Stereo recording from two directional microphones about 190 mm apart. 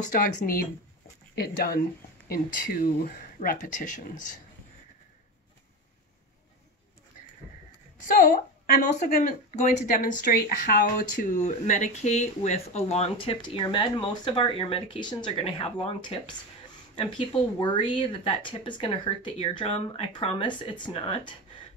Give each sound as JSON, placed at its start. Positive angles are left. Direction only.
{"t": 0.0, "sound": "speech", "side_deg": 45}
{"t": 8.2, "sound": "speech", "side_deg": 45}